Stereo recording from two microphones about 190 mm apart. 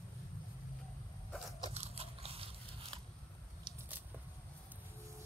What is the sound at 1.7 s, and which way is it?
Biting, 30° right (ahead or behind).